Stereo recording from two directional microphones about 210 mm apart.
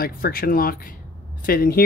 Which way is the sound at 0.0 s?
45° left (ahead or behind).